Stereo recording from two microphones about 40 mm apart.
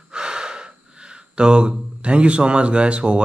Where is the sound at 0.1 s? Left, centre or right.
Right.